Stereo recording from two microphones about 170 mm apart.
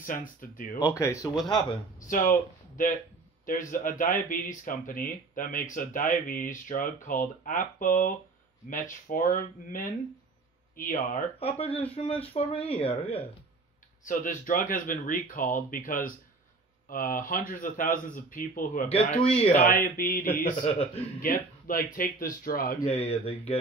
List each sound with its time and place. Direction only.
0.0 s speech: 55° left (ahead or behind)
0.8 s speech: 15° left (ahead or behind)
2.0 s speech: 50° left (ahead or behind)
11.3 s speech: 35° left (ahead or behind)
14.0 s speech: 50° left (ahead or behind)
18.9 s speech: 35° left (ahead or behind)
19.5 s speech: 55° left (ahead or behind)
20.6 s speech: 35° left (ahead or behind)
21.2 s speech: 55° left (ahead or behind)
23.0 s speech: 35° left (ahead or behind)